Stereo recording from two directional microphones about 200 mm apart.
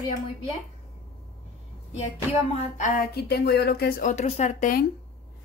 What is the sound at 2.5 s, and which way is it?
Speech, 40° left (ahead or behind).